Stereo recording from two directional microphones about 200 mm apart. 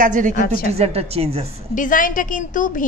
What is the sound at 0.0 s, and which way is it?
Speech, 40° right (ahead or behind).